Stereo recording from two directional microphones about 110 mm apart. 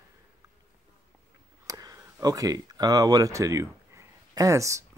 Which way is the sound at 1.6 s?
35° right (ahead or behind).